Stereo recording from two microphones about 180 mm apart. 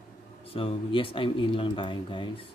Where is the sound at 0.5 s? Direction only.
30° left (ahead or behind).